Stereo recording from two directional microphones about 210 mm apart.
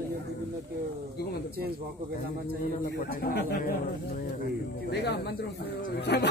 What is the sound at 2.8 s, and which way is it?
Speech, 45° left (ahead or behind).